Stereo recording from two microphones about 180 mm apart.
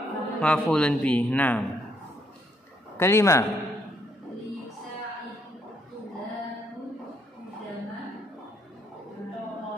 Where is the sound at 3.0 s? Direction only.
15° left (ahead or behind).